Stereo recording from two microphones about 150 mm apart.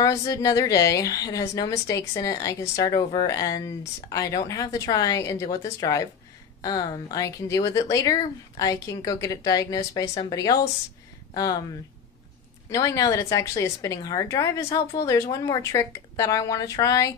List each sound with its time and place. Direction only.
0.0 s a woman's voice: 20° left (ahead or behind)
12.6 s a woman's voice: 20° left (ahead or behind)